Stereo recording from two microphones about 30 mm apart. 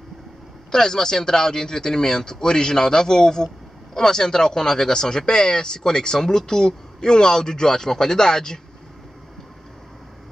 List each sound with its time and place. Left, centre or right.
0.7 s speech: centre